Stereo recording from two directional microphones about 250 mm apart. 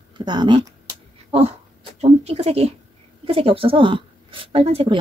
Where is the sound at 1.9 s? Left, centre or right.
Right.